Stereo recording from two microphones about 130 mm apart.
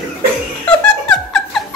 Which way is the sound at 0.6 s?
5° left (ahead or behind).